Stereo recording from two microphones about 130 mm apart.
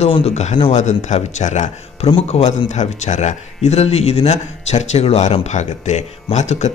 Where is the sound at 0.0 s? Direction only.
55° left (ahead or behind).